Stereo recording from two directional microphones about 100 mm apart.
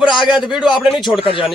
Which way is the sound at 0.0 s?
50° left (ahead or behind).